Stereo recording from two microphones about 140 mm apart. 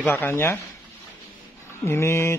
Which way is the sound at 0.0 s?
15° left (ahead or behind).